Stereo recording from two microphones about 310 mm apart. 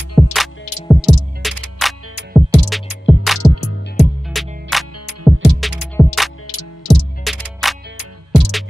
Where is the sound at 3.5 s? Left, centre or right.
Left.